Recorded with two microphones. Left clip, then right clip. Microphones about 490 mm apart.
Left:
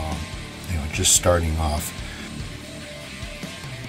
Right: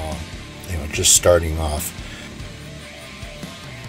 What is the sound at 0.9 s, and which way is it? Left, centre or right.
Speech, centre.